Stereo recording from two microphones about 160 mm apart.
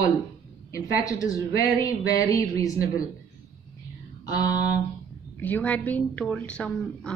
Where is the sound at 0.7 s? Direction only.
20° left (ahead or behind).